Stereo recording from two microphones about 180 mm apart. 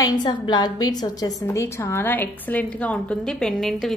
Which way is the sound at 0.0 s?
25° left (ahead or behind).